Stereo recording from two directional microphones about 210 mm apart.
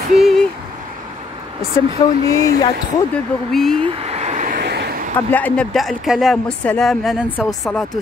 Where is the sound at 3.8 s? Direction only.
30° right (ahead or behind); by 5.1 s 50° right (ahead or behind).